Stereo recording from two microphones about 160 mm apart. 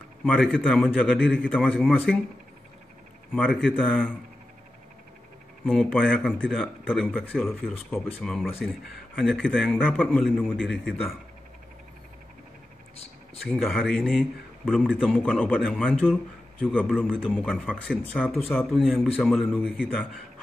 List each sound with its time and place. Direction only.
0.2 s a man's voice: centre (ahead or behind)
5.7 s a man's voice: 5° left (ahead or behind)
12.9 s a sound: 40° left (ahead or behind)
13.6 s a man's voice: centre (ahead or behind)